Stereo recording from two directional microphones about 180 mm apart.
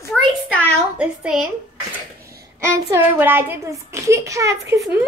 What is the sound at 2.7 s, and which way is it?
A woman's voice, 15° right (ahead or behind).